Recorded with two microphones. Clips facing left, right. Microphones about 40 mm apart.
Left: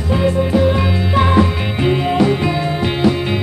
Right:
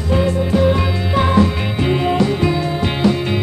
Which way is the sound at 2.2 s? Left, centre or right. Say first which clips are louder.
Left 1 dB; left.